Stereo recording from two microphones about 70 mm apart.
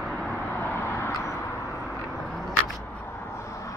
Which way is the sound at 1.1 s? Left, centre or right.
Left.